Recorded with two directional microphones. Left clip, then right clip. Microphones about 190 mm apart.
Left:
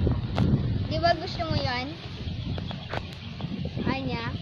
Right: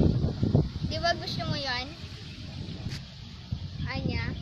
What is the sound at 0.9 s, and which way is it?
Speech, 5° right (ahead or behind).